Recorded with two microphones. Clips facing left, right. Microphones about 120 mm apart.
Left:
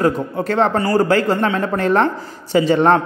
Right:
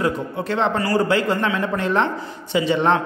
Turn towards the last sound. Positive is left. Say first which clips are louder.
# left 5 dB
turn(degrees=45)  # may be behind; listen again after turning